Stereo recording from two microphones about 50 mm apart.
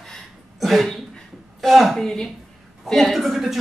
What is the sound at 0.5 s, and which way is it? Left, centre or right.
A woman's voice, centre.